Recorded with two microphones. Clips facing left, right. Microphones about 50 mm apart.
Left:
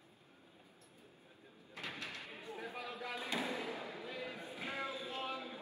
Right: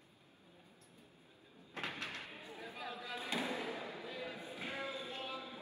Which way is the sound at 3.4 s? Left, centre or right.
Right.